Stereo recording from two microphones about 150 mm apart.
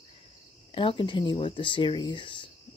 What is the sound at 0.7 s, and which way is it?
Speech, 35° left (ahead or behind).